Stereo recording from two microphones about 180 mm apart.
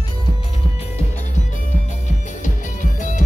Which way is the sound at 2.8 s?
45° left (ahead or behind).